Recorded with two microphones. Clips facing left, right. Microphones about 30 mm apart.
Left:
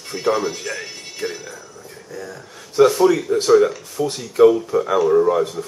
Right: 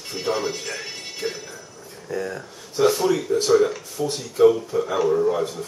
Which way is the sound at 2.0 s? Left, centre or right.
Right.